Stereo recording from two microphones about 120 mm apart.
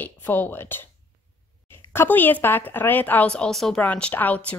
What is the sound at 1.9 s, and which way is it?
Speech, 15° left (ahead or behind).